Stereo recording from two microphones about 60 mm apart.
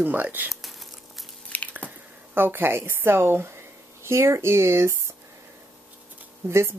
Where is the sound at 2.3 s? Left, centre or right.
Right.